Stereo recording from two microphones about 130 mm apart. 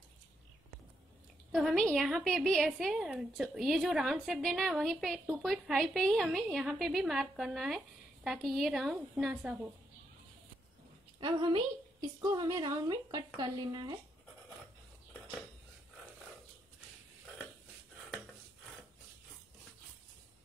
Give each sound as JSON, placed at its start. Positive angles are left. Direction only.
{"t": 1.5, "sound": "a woman's voice", "side_deg": 0}
{"t": 11.1, "sound": "a woman's voice", "side_deg": -35}